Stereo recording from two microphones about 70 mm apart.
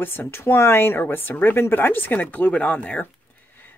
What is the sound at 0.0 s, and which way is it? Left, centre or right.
Speech, left.